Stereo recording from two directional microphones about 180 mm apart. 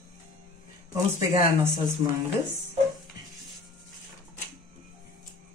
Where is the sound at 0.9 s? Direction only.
20° right (ahead or behind).